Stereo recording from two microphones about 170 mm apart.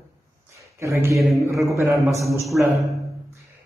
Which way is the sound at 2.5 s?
5° right (ahead or behind).